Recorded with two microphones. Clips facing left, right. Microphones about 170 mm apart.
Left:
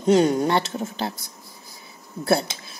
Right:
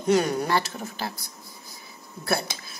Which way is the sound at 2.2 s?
25° left (ahead or behind).